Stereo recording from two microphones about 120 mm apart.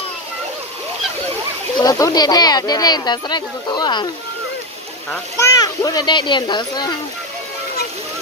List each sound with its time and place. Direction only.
1.8 s speech: 30° left (ahead or behind)
5.4 s speech: 25° left (ahead or behind)